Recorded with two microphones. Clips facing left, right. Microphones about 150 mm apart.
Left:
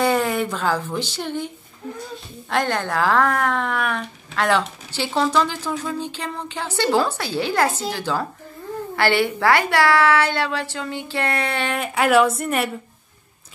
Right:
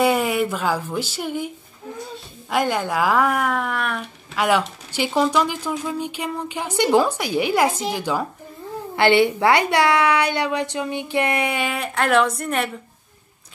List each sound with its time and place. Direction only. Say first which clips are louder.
0.0 s speech: right 1 dB; 10° right (ahead or behind)
2.5 s speech: right 1 dB; 10° right (ahead or behind)
11.8 s speech: left 3 dB; 5° left (ahead or behind)